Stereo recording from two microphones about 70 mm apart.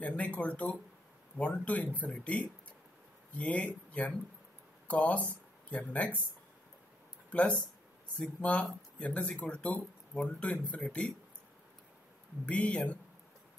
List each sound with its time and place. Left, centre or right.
0.0 s speech: centre
7.2 s speech: centre
12.4 s speech: centre